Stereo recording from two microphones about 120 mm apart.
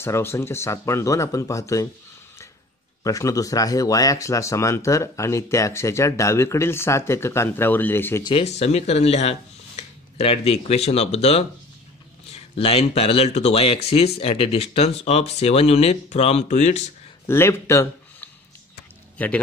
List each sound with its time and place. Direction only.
0.0 s speech: 20° left (ahead or behind)
3.0 s speech: 30° left (ahead or behind)
8.2 s speech: 40° left (ahead or behind)
8.5 s speech: 65° left (ahead or behind)
17.3 s speech: 20° left (ahead or behind)
19.1 s a man's voice: 15° left (ahead or behind)